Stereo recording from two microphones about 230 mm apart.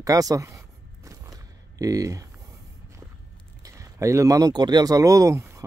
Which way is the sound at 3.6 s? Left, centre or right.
Centre.